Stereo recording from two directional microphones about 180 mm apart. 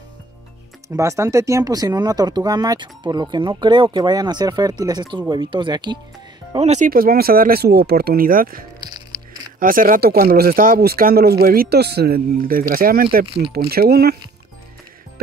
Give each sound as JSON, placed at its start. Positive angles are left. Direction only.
{"t": 0.8, "sound": "speech", "side_deg": -15}
{"t": 6.5, "sound": "speech", "side_deg": -35}
{"t": 6.9, "sound": "speech", "side_deg": -55}
{"t": 8.8, "sound": "music", "side_deg": -20}
{"t": 9.6, "sound": "speech", "side_deg": -50}